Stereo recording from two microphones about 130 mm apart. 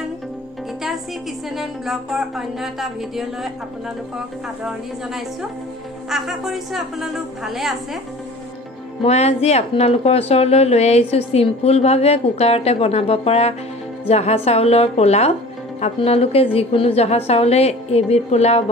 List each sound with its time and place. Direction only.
1.6 s speech: centre (ahead or behind)
4.6 s speech: centre (ahead or behind)
9.0 s a woman's voice: 55° left (ahead or behind)